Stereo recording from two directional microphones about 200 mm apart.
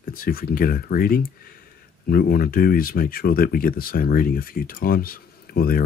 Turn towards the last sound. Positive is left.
turn(degrees=50)  # may be behind; listen again after turning